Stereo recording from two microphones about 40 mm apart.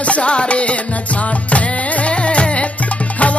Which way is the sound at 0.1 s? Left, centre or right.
Left.